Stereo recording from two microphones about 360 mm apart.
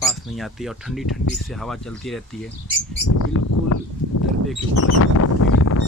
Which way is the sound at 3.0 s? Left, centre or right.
Left.